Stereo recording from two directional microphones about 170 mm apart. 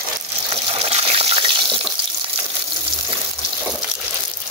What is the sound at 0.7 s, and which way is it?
Water, 35° right (ahead or behind).